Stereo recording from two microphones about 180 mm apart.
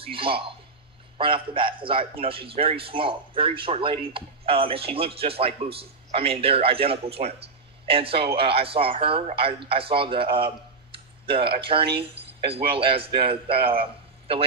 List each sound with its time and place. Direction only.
0.0 s a man's voice: 30° right (ahead or behind)